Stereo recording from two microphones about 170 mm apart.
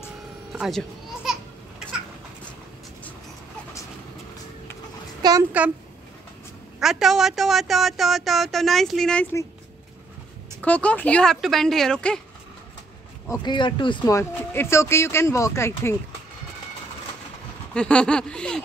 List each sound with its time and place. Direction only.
0.5 s children playing: centre (ahead or behind)
5.2 s a child's voice: 25° right (ahead or behind)
6.8 s speech: centre (ahead or behind)
10.6 s speech: 10° left (ahead or behind)
13.3 s speech: 25° left (ahead or behind)
17.7 s speech: 5° left (ahead or behind)